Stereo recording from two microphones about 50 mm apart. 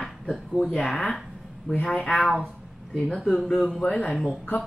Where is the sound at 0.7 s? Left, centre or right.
Centre.